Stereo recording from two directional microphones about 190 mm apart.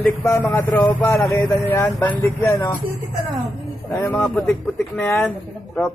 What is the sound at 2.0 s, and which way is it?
Speech, 15° left (ahead or behind).